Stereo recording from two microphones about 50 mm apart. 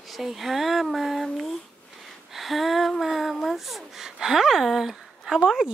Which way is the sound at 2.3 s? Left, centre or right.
Centre.